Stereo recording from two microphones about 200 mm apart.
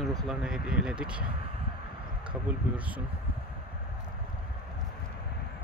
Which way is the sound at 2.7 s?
5° right (ahead or behind).